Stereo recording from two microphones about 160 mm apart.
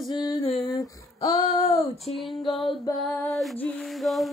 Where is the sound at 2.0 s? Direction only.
Centre (ahead or behind).